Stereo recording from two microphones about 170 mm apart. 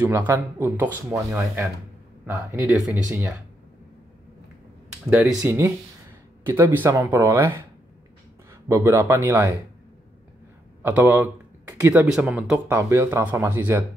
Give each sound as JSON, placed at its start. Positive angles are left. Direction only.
{"t": 0.0, "sound": "speech", "side_deg": -15}
{"t": 5.1, "sound": "speech", "side_deg": -5}
{"t": 8.6, "sound": "speech", "side_deg": -15}
{"t": 10.8, "sound": "a man's voice", "side_deg": -10}